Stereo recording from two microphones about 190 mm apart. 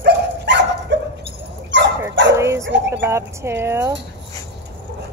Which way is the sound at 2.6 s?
70° right (ahead or behind).